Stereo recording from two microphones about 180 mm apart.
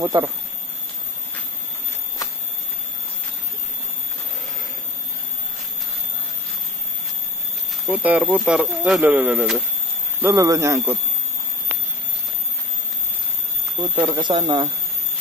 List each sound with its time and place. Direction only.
0.0 s speech: 20° right (ahead or behind)
7.8 s speech: 10° right (ahead or behind)
10.2 s speech: 20° right (ahead or behind)
13.8 s speech: 25° right (ahead or behind)